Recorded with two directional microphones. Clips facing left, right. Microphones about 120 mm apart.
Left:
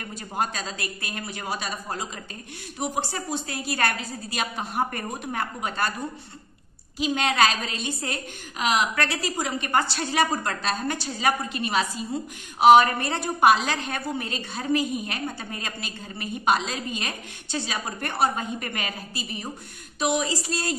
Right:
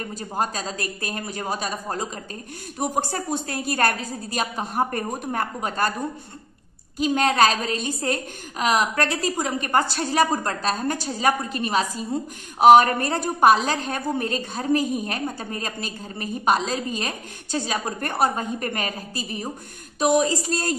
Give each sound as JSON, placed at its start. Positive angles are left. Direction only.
{"t": 0.1, "sound": "a woman's voice", "side_deg": -40}
{"t": 7.0, "sound": "a woman's voice", "side_deg": -45}